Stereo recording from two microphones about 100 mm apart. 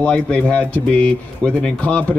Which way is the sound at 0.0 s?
10° left (ahead or behind).